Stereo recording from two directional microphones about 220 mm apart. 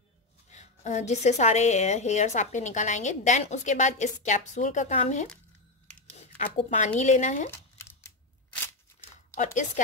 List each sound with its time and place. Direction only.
0.5 s a woman's voice: 30° left (ahead or behind)
9.3 s speech: 35° left (ahead or behind)